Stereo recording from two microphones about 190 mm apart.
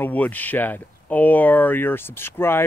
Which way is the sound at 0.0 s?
10° left (ahead or behind).